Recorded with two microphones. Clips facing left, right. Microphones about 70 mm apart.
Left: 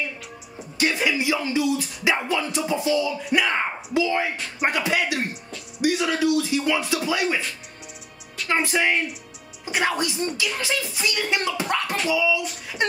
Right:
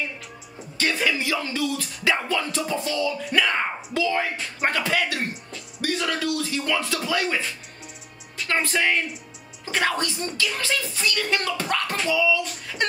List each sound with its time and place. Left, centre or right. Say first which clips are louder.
0.7 s speech: left 1 dB; centre
8.5 s speech: left 1 dB; centre